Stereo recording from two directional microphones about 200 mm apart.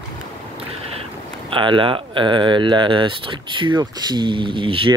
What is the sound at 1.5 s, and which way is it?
Speech, 25° right (ahead or behind).